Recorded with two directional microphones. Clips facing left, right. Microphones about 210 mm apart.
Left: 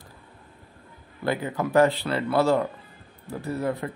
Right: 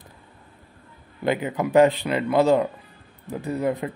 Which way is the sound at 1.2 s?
20° right (ahead or behind).